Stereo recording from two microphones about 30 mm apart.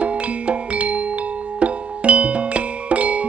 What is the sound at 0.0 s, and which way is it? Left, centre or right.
Music, right.